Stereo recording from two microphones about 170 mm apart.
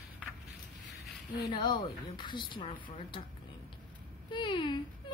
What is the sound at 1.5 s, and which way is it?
Speech, 25° left (ahead or behind).